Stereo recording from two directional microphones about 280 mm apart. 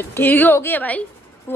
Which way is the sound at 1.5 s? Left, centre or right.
Centre.